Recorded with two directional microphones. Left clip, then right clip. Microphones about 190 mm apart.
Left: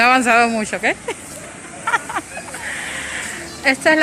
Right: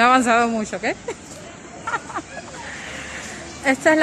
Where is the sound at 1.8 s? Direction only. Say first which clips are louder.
Left 6 dB; centre (ahead or behind).